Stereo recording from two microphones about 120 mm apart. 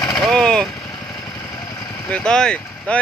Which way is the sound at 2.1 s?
5° left (ahead or behind).